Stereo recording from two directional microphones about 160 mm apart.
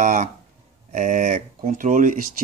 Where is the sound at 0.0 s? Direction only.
50° right (ahead or behind).